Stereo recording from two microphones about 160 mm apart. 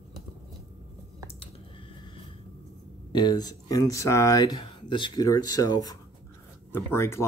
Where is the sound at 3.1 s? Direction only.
25° left (ahead or behind).